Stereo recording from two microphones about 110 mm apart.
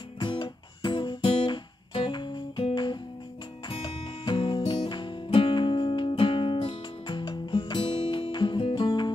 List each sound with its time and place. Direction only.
0.2 s guitar: 45° left (ahead or behind)
3.6 s music: 50° left (ahead or behind)